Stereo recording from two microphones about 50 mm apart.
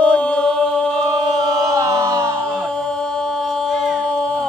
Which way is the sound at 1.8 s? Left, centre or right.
Right.